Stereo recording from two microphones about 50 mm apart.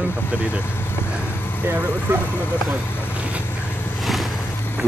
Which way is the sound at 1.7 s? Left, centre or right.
Right.